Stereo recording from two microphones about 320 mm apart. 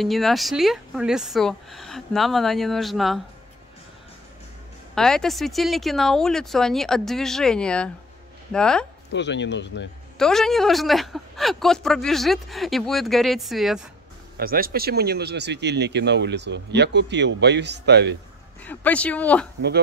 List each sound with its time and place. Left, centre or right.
0.0 s a man's voice: centre
4.9 s a man's voice: centre
9.1 s speech: left
10.1 s a man's voice: centre
14.3 s speech: right
18.6 s a man's voice: centre